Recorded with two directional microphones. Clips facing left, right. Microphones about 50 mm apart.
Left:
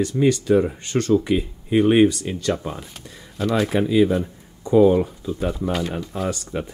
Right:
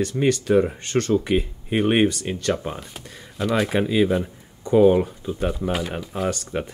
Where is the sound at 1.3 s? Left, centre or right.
Right.